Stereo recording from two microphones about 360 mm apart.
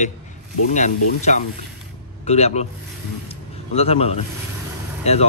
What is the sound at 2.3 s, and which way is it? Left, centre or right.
Speech, centre.